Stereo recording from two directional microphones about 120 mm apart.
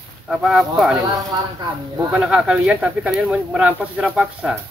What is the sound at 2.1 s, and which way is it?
Speech, 5° right (ahead or behind).